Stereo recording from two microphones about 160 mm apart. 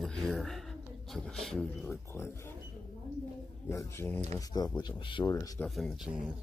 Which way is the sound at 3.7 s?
15° left (ahead or behind).